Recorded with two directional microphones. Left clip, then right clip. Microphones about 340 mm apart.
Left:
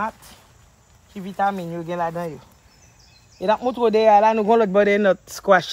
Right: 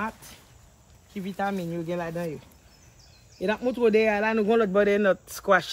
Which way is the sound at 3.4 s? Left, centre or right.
Centre.